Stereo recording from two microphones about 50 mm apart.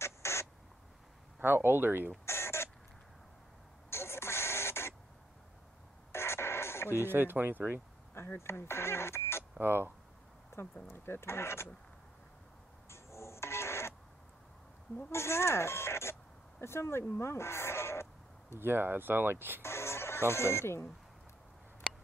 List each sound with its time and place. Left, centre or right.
0.0 s rodents: left
1.4 s speech: right
2.2 s rodents: left
3.9 s radio: left
6.1 s music: left
7.1 s speech: right
8.1 s speech: left
9.6 s speech: right
10.5 s speech: left
12.9 s a sound: left
15.0 s speech: left
18.6 s speech: right
19.6 s speech: left